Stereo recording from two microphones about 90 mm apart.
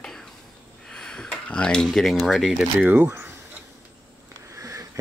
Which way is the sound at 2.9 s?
20° right (ahead or behind).